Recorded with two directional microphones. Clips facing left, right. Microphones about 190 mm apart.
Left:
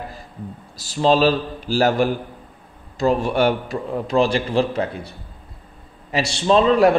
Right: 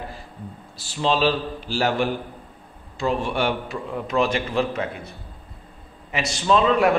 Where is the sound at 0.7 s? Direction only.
40° left (ahead or behind).